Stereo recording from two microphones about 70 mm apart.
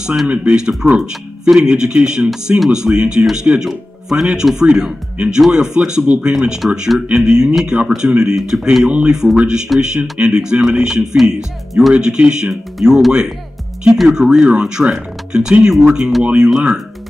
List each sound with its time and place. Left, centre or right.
0.0 s speech: centre
11.1 s music: centre
11.9 s speech: centre